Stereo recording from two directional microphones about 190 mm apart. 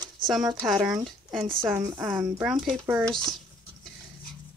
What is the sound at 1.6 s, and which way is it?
A woman's voice, 10° right (ahead or behind).